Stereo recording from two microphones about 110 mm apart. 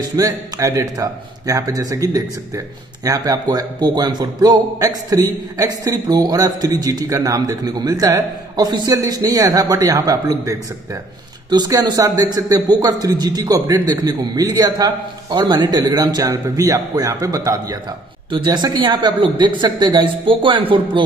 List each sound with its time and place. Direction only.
0.0 s speech: 35° right (ahead or behind)
18.3 s a man's voice: 40° right (ahead or behind)